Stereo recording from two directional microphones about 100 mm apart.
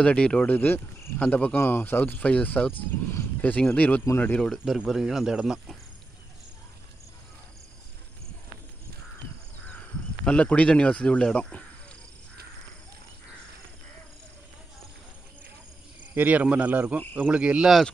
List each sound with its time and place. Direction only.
0.0 s speech: 10° left (ahead or behind)
4.4 s speech: 5° left (ahead or behind)
10.2 s speech: 10° left (ahead or behind)
16.2 s speech: 15° right (ahead or behind)